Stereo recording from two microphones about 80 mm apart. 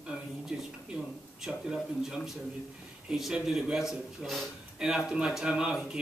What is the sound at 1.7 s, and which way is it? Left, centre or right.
A man's voice, centre.